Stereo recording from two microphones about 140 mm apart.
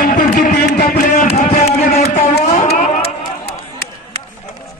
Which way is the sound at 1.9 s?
50° left (ahead or behind).